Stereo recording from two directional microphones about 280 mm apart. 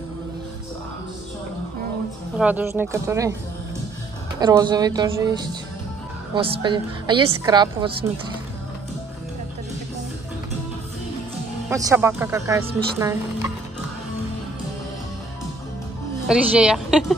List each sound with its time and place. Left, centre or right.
2.3 s a woman's voice: centre
4.4 s a woman's voice: centre
11.7 s a woman's voice: centre
16.3 s speech: centre